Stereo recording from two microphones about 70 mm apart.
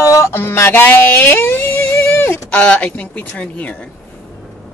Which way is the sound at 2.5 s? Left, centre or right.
Centre.